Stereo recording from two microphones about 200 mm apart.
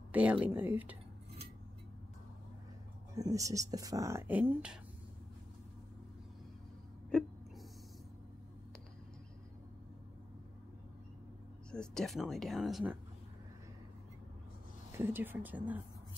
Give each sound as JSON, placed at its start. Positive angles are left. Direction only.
{"t": 0.1, "sound": "speech", "side_deg": -5}
{"t": 3.2, "sound": "speech", "side_deg": -15}
{"t": 11.7, "sound": "speech", "side_deg": 5}
{"t": 15.0, "sound": "speech", "side_deg": -10}